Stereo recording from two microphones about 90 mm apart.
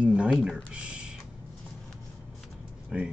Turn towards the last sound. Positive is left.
turn(degrees=-10)  # may be behind; listen again after turning